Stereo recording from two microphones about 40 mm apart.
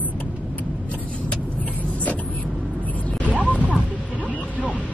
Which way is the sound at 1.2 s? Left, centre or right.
Left.